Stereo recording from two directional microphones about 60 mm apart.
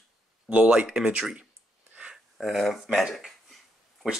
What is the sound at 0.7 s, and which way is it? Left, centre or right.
Speech, centre.